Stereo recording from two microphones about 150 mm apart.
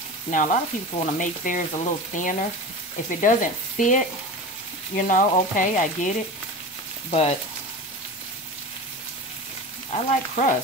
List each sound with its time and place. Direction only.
0.3 s frying: 55° left (ahead or behind)
7.1 s frying: 45° left (ahead or behind)
9.8 s frying: 50° left (ahead or behind)